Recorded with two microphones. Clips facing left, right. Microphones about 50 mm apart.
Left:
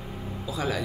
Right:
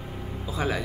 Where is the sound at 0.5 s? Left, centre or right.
Right.